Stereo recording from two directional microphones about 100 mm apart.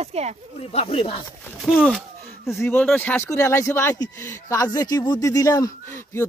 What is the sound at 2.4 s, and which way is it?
Speech, 20° left (ahead or behind).